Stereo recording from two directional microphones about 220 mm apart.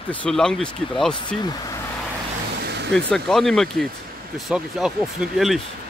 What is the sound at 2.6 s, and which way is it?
Vehicle, 50° right (ahead or behind).